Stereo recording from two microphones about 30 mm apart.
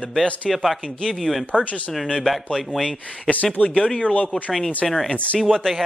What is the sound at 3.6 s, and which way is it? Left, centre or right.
Speech, left.